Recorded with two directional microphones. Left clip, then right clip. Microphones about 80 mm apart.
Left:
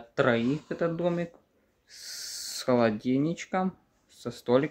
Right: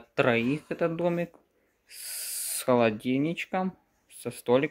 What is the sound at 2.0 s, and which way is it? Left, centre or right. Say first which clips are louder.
Owl: left 1 dB; right.